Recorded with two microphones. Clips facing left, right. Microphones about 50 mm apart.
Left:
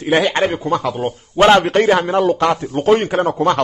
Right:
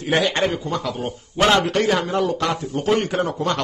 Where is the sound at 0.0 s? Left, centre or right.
Left.